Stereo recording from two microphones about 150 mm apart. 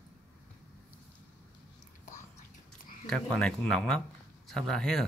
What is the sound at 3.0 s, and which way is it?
Humming, 5° left (ahead or behind).